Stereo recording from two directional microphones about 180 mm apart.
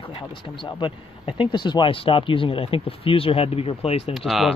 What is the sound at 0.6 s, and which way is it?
Speech, 25° left (ahead or behind).